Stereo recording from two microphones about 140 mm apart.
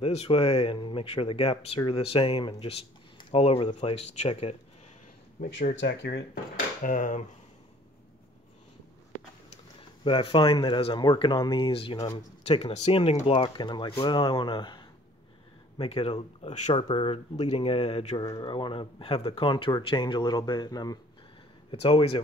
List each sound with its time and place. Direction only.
0.0 s speech: 45° left (ahead or behind)
5.4 s speech: 90° left
6.3 s dishes: 85° left
9.8 s speech: 35° left (ahead or behind)
13.3 s speech: 35° left (ahead or behind)
21.6 s speech: 40° left (ahead or behind)